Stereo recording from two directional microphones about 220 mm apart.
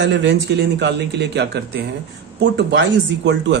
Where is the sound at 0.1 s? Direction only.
50° right (ahead or behind).